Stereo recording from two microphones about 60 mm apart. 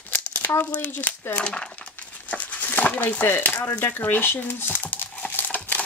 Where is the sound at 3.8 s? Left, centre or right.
Left.